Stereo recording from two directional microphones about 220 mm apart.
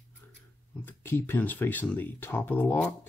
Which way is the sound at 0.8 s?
10° left (ahead or behind).